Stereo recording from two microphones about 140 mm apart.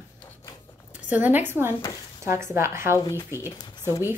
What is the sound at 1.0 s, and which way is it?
A woman's voice, 10° right (ahead or behind).